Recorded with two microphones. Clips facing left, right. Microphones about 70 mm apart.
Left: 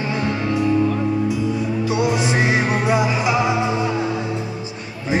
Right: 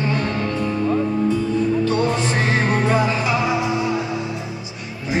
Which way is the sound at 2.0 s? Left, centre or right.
Centre.